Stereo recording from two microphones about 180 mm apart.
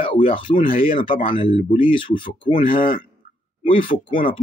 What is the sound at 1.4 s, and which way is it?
Speech, 35° left (ahead or behind).